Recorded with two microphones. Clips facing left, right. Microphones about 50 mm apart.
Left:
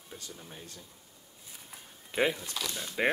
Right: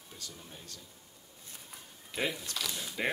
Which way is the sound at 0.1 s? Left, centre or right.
Left.